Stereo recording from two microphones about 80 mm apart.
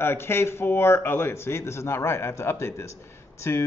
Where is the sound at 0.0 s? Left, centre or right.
Left.